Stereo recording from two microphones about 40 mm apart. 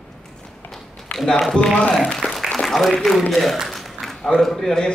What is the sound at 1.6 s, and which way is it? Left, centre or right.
Speech, left.